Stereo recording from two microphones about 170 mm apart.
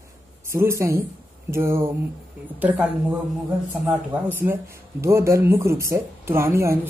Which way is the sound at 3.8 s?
10° right (ahead or behind).